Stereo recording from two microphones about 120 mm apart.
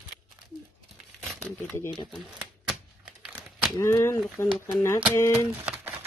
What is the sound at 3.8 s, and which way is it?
Speech, 25° left (ahead or behind).